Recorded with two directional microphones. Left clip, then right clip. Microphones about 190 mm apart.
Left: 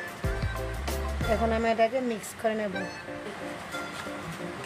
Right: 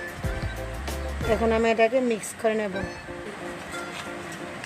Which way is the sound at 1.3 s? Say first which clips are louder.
Right 4 dB; 35° right (ahead or behind).